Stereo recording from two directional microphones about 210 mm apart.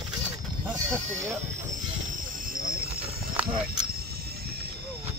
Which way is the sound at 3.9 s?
45° right (ahead or behind).